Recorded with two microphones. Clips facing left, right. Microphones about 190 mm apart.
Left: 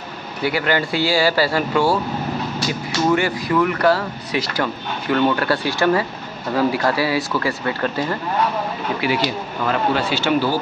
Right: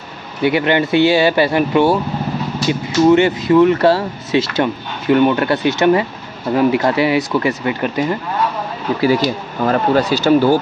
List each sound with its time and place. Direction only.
0.4 s speech: 20° right (ahead or behind)
9.0 s speech: 40° right (ahead or behind)